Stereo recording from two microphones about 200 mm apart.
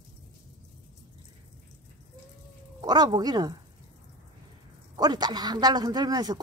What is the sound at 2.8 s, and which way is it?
Speech, 20° right (ahead or behind).